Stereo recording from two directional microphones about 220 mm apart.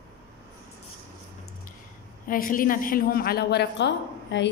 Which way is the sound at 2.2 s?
40° left (ahead or behind).